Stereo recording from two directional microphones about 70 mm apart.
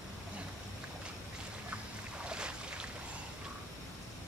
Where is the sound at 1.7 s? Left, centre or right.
Centre.